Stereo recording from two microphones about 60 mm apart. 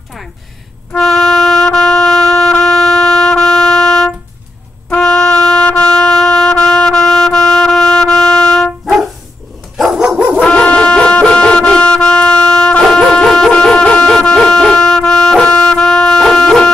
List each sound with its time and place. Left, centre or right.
0.9 s music: centre
4.9 s wind instrument: centre
5.8 s music: centre
9.8 s dog: centre
10.4 s music: centre
13.5 s dog: centre
15.0 s music: centre
15.4 s music: centre
15.8 s music: centre